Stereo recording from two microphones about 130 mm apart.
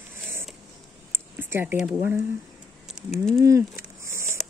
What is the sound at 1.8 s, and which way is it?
Speech, 15° right (ahead or behind).